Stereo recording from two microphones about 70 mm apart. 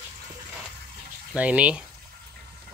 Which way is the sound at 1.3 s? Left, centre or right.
Centre.